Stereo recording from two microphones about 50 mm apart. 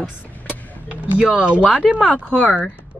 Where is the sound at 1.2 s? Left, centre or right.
Right.